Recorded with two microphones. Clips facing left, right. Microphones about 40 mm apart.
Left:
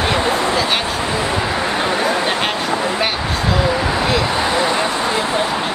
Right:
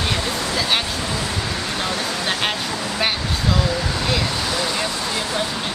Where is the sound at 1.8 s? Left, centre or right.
Left.